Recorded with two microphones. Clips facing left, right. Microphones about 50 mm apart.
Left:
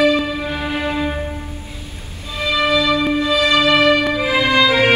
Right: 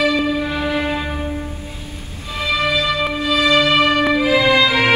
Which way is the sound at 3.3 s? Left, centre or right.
Right.